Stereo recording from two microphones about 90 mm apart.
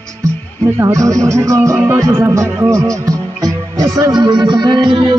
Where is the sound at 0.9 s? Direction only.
35° right (ahead or behind).